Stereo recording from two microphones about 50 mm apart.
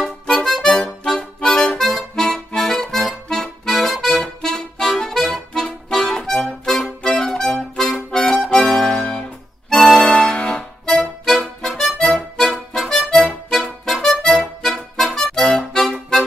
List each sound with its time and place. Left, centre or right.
0.0 s music: centre
8.7 s music: centre
10.0 s keyboard: centre
10.9 s music: centre